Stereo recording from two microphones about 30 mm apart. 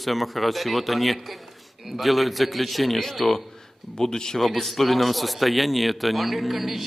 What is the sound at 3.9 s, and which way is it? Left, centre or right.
Speech, left.